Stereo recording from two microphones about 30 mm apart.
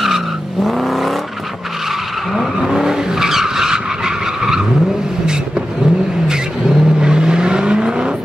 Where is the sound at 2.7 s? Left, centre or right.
Centre.